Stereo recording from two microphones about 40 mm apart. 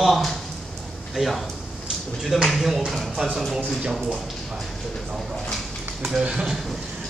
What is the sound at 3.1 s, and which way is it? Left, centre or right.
Speech, centre.